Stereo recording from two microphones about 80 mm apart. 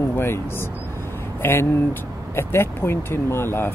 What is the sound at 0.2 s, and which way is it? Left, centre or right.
Speech, left.